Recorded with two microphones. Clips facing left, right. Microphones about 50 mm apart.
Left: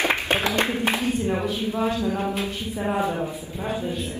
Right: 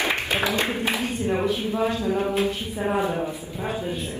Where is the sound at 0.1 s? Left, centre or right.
Left.